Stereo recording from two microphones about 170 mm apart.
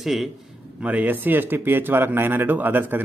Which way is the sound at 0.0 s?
Centre (ahead or behind).